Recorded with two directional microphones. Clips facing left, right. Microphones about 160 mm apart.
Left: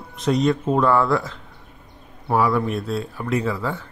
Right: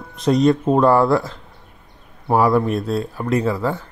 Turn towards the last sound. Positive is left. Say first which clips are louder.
# right 4 dB
turn(degrees=-40)  # may be behind; listen again after turning